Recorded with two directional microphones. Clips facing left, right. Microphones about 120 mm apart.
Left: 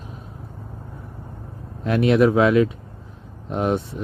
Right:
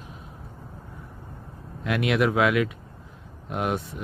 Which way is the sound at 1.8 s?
35° left (ahead or behind).